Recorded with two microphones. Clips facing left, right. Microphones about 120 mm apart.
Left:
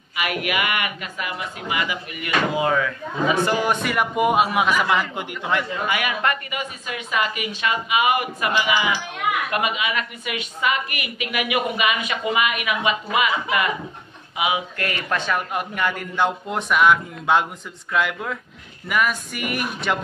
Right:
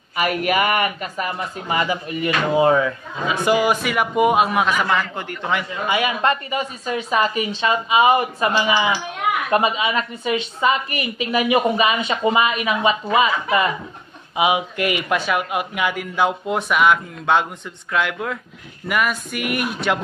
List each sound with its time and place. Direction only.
0.1 s a woman's voice: 40° right (ahead or behind)
3.4 s a man's voice: 10° right (ahead or behind); by 5.2 s 15° left (ahead or behind)
5.9 s a woman's voice: 25° right (ahead or behind); by 20.0 s centre (ahead or behind)